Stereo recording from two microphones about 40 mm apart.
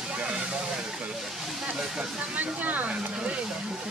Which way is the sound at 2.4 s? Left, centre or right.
Right.